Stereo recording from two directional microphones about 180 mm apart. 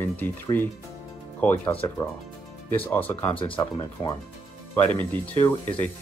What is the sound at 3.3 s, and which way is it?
Speech, 30° left (ahead or behind).